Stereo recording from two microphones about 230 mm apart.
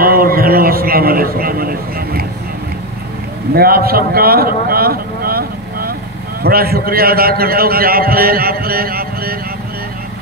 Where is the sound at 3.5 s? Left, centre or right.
Right.